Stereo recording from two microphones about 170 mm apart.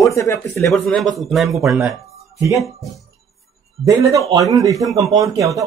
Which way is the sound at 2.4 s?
20° right (ahead or behind).